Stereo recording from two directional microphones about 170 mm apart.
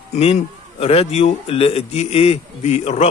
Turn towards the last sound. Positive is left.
turn(degrees=40)  # may be behind; listen again after turning